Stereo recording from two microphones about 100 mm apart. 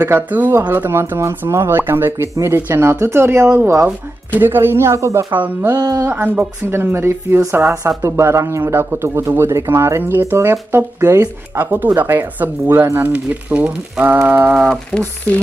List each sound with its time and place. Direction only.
0.0 s speech: 20° right (ahead or behind)
5.3 s speech: 20° right (ahead or behind)
5.8 s speech: 40° right (ahead or behind)
6.0 s speech: 20° right (ahead or behind)